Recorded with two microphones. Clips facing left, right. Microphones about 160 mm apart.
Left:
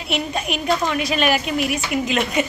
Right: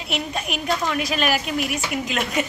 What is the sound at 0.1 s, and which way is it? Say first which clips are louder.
A woman's voice: left 3 dB; centre (ahead or behind).